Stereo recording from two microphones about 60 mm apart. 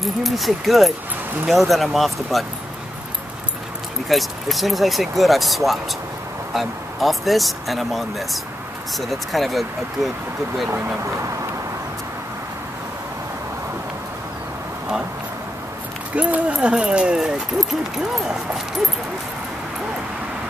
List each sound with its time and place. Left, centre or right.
0.0 s speech: centre
4.1 s speech: centre
16.2 s speech: centre